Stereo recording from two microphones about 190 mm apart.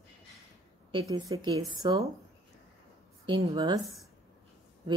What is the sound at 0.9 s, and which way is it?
Speech, 20° right (ahead or behind).